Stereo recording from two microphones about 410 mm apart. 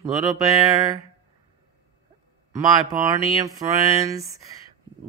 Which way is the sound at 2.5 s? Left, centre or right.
Centre.